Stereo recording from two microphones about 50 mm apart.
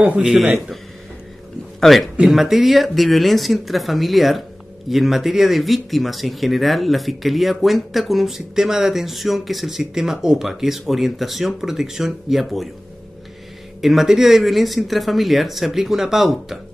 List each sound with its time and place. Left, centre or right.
0.2 s a man's voice: centre
1.8 s a man's voice: centre
13.7 s speech: centre